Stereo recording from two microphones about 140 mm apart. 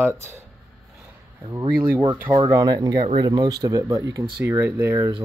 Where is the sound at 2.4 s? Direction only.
30° right (ahead or behind).